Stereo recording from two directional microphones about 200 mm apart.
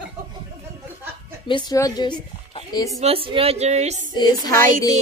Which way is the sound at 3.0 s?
30° right (ahead or behind).